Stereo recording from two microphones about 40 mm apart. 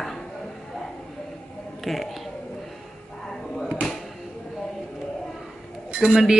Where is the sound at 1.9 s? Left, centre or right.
Centre.